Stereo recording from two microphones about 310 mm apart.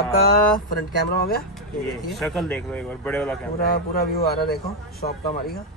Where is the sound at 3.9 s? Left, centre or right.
Left.